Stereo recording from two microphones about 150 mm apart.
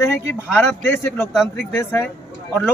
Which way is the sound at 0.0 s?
15° left (ahead or behind).